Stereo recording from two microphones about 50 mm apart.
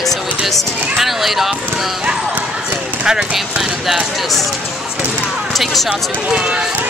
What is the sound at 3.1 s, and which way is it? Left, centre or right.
Speech, centre.